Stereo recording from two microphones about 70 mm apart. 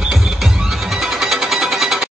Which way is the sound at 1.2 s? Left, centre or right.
Centre.